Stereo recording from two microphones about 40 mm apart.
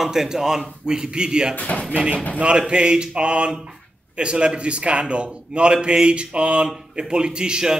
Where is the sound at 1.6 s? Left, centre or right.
Left.